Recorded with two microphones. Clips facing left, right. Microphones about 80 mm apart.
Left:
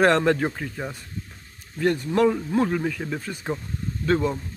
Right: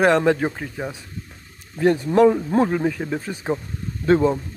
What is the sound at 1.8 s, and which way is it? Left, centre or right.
Speech, right.